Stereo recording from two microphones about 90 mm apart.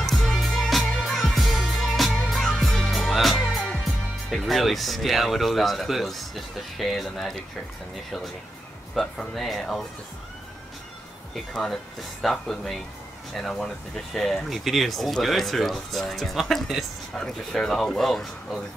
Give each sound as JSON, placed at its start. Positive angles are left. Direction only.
{"t": 0.0, "sound": "music", "side_deg": 5}
{"t": 4.3, "sound": "speech", "side_deg": 0}
{"t": 9.0, "sound": "speech", "side_deg": 0}
{"t": 11.3, "sound": "speech", "side_deg": 5}